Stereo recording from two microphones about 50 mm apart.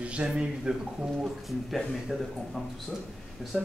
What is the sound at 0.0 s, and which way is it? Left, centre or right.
A man's voice, right.